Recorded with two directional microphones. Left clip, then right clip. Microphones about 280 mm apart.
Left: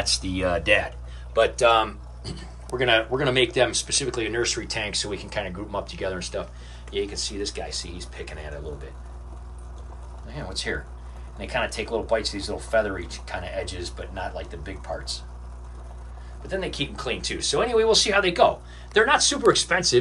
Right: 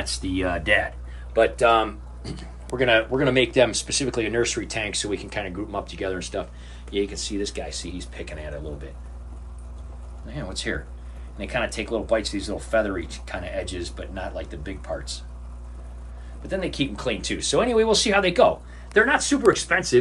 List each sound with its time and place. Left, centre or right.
0.0 s speech: centre
10.2 s speech: centre
16.4 s speech: centre
19.0 s speech: centre